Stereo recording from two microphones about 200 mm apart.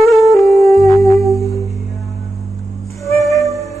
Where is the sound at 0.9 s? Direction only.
15° left (ahead or behind).